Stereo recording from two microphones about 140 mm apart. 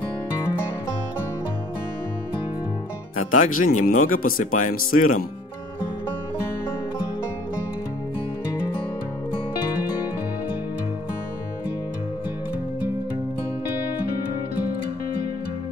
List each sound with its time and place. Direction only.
3.3 s speech: 75° left (ahead or behind)